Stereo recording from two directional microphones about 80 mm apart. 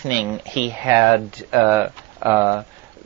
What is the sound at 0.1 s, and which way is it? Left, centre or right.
Speech, right.